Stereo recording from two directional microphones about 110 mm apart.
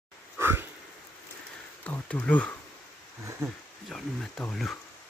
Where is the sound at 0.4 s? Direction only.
20° right (ahead or behind).